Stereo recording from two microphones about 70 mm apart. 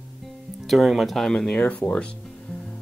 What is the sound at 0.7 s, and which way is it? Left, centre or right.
Speech, centre.